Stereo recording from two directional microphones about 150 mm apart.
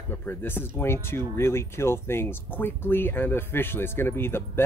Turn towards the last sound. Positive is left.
turn(degrees=15)  # may be behind; listen again after turning